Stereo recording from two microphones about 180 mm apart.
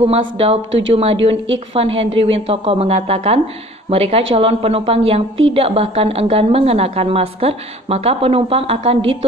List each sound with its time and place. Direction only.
0.0 s a woman's voice: 35° right (ahead or behind)
0.7 s speech: 90° right
0.9 s a woman's voice: 35° right (ahead or behind)